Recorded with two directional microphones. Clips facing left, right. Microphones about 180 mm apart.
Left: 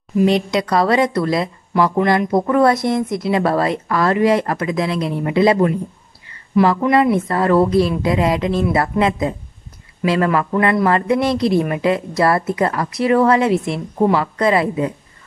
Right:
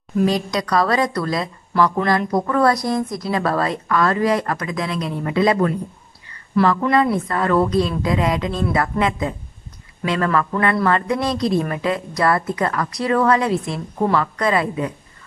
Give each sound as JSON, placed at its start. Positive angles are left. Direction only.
{"t": 0.2, "sound": "speech", "side_deg": 25}
{"t": 7.2, "sound": "speech", "side_deg": 25}